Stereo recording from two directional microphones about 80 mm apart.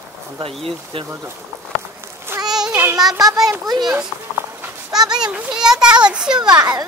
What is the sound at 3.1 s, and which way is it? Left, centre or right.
Speech, right.